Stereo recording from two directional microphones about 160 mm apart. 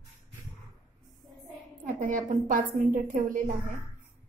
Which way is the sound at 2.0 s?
55° right (ahead or behind).